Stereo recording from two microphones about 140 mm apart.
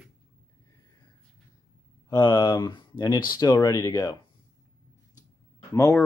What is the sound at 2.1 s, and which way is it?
Speech, 25° left (ahead or behind).